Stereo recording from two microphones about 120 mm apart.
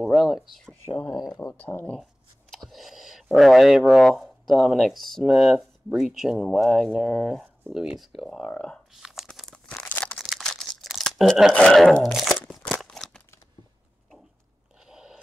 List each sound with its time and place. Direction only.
0.0 s speech: centre (ahead or behind)
1.4 s speech: 20° left (ahead or behind)
2.5 s speech: centre (ahead or behind)
10.1 s crumpling: centre (ahead or behind)
11.5 s crunch: 5° left (ahead or behind)
14.9 s a sound: 5° right (ahead or behind)